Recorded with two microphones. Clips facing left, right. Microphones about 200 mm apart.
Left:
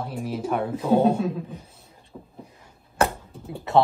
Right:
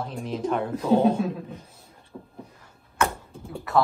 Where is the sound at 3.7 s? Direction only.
25° left (ahead or behind).